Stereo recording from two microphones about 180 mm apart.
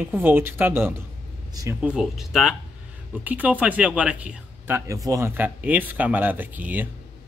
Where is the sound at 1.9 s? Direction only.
Centre (ahead or behind).